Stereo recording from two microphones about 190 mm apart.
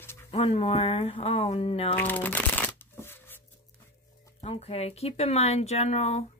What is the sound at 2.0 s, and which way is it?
Shuffling cards, 10° left (ahead or behind).